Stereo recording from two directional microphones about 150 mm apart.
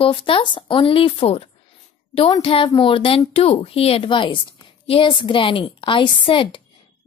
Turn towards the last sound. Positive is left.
turn(degrees=35)  # may be behind; listen again after turning